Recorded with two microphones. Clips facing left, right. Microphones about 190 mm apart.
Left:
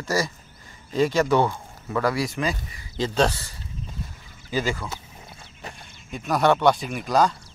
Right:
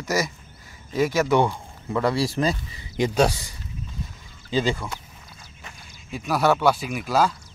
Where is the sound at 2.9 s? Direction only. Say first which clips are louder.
Right 2 dB; 15° right (ahead or behind).